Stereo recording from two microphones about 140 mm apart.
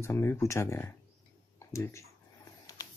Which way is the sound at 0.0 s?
20° left (ahead or behind).